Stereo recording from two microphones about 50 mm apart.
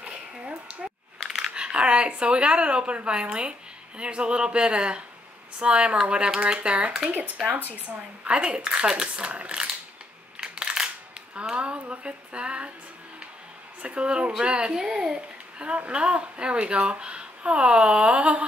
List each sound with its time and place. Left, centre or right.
0.0 s a sound: right
1.5 s speech: right
8.2 s speech: right
10.4 s crushing: centre
11.4 s speech: right
13.8 s speech: right
14.7 s a child's voice: centre
15.6 s speech: right